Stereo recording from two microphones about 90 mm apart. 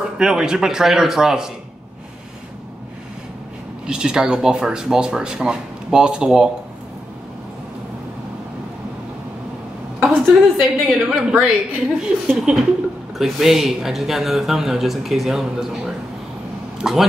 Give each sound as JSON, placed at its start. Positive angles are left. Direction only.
{"t": 0.2, "sound": "speech", "side_deg": -5}
{"t": 3.8, "sound": "speech", "side_deg": -10}
{"t": 10.0, "sound": "a woman's voice", "side_deg": -5}